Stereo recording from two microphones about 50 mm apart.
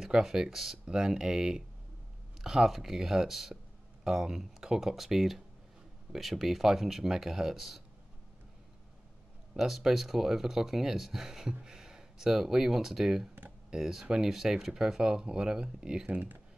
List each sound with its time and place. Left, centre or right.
0.0 s speech: centre
9.5 s speech: centre
16.1 s speech: right